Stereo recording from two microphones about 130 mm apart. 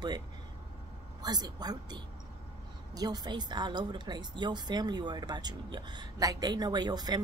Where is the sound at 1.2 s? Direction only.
30° right (ahead or behind).